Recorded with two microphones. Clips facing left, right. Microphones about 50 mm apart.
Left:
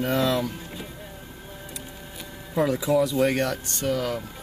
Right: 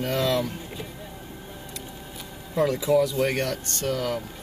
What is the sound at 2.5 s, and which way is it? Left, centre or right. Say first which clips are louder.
Speech: right 1 dB; centre.